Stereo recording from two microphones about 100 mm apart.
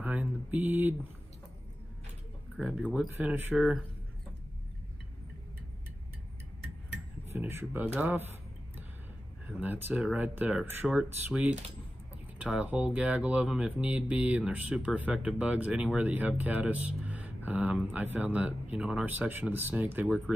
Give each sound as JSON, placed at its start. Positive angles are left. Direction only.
{"t": 0.0, "sound": "speech", "side_deg": -15}
{"t": 2.6, "sound": "speech", "side_deg": -10}
{"t": 3.5, "sound": "speech", "side_deg": -5}
{"t": 7.2, "sound": "speech", "side_deg": -25}
{"t": 9.6, "sound": "speech", "side_deg": -20}